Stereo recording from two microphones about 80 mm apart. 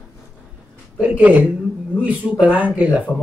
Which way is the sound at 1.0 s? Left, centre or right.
Centre.